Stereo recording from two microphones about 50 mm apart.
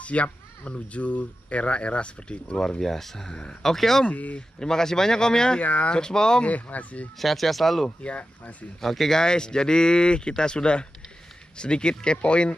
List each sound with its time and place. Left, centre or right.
0.0 s speech: left
2.8 s speech: centre
4.0 s speech: left
4.6 s speech: centre
5.6 s speech: left
5.9 s speech: centre
6.4 s speech: left
7.2 s speech: centre
8.0 s speech: left
8.8 s speech: centre; by 12.5 s left